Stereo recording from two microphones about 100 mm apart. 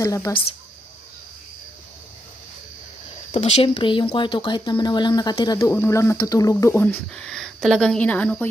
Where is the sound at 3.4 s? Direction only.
90° left; by 5.7 s 40° left (ahead or behind).